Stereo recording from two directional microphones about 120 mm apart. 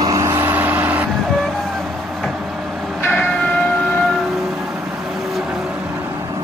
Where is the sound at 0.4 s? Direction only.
15° right (ahead or behind).